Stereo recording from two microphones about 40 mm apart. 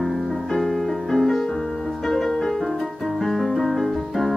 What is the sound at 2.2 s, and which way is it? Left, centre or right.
Music, centre.